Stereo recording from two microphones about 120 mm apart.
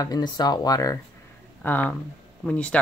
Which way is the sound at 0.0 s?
35° left (ahead or behind).